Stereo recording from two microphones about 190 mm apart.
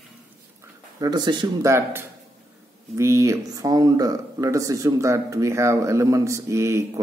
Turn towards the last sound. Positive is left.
turn(degrees=-15)  # may be behind; listen again after turning